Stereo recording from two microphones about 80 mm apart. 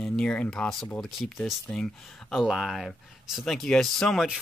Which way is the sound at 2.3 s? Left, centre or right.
Centre.